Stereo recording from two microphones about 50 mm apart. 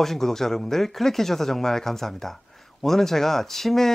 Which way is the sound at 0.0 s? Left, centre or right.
Centre.